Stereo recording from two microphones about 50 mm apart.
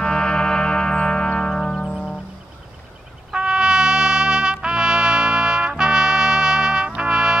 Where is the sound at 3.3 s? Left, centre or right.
Centre.